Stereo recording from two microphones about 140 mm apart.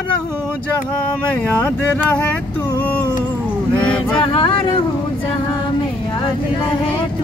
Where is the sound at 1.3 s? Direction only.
10° left (ahead or behind).